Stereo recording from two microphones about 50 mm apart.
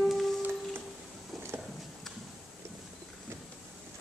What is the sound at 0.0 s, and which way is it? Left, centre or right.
Music, centre.